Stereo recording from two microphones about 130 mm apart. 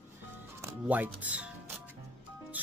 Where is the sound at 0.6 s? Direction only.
10° right (ahead or behind).